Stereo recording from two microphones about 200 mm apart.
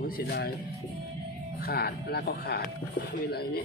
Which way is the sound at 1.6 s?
50° left (ahead or behind).